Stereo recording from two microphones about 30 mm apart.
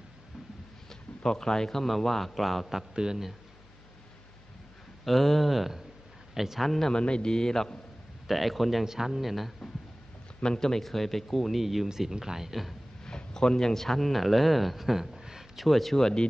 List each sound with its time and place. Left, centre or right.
0.8 s a man's voice: centre
2.9 s speech: right
5.0 s a man's voice: centre
6.6 s speech: centre
6.9 s a man's voice: left
8.3 s speech: centre
8.8 s speech: centre
9.2 s speech: centre
10.6 s speech: centre
11.5 s speech: centre
11.9 s speech: centre
13.0 s a sound: left
13.8 s speech: centre
15.5 s speech: centre